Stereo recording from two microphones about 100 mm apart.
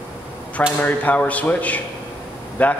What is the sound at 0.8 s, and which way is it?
A man's voice, 15° left (ahead or behind).